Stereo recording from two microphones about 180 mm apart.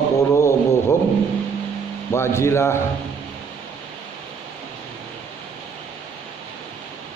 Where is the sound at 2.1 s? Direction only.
15° left (ahead or behind).